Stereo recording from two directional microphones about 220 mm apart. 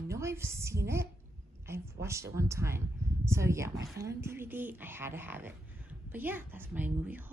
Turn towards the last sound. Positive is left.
turn(degrees=-10)  # may be behind; listen again after turning